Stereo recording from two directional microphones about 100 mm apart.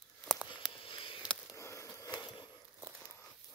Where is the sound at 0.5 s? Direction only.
55° left (ahead or behind).